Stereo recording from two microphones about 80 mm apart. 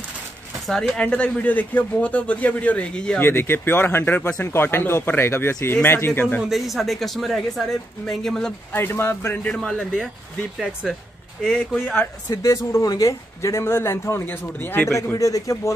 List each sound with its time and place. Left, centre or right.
0.7 s speech: centre
0.9 s a man's voice: centre
3.2 s speech: left
6.5 s speech: centre
8.7 s speech: left
9.4 s a man's voice: centre
10.6 s speech: centre
11.5 s speech: centre
12.4 s speech: left
15.1 s speech: left